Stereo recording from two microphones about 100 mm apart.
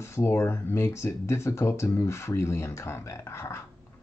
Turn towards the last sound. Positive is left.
turn(degrees=25)  # may be behind; listen again after turning